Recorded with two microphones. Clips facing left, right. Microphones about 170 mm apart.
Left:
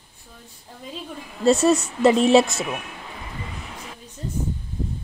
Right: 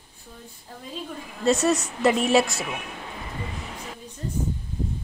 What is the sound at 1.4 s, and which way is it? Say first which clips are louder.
A woman's voice: left 4 dB; 30° left (ahead or behind).